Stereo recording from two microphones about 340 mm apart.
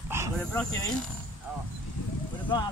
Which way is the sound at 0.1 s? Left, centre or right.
Centre.